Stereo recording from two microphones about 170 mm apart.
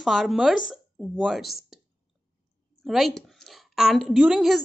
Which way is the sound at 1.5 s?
60° left (ahead or behind).